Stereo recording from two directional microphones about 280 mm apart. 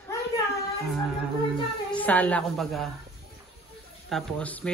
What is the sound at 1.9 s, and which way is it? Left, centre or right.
Speech, centre.